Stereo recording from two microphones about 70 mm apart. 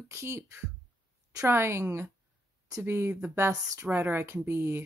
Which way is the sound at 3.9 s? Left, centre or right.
Right.